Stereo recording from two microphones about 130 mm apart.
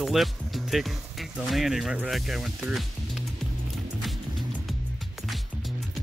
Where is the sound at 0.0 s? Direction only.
Centre (ahead or behind).